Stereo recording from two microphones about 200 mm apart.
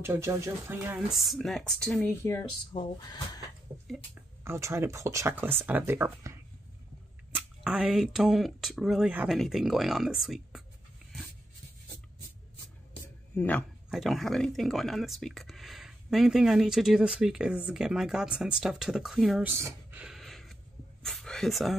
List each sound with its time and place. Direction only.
0.0 s speech: 15° right (ahead or behind)
0.9 s speech: centre (ahead or behind)
2.7 s speech: 20° left (ahead or behind)
4.1 s speech: 15° right (ahead or behind)
13.4 s speech: 10° left (ahead or behind)
19.5 s a sound: 10° right (ahead or behind)